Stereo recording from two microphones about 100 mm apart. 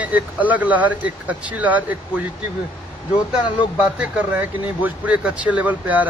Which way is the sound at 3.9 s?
15° right (ahead or behind).